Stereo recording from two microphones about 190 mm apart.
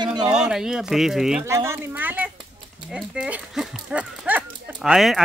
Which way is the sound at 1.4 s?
15° right (ahead or behind).